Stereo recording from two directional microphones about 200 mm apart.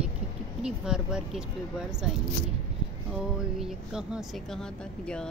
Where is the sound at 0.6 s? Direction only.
5° right (ahead or behind).